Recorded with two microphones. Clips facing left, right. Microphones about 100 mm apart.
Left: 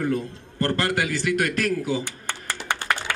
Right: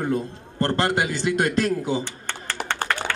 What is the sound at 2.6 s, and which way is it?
Typing, 55° right (ahead or behind).